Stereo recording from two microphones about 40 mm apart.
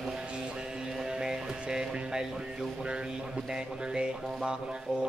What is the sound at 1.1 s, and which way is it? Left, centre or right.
Music, centre.